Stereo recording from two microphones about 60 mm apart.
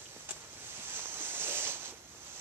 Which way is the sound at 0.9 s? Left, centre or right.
Right.